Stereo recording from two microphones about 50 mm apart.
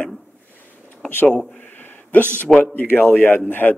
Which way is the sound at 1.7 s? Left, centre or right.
Left.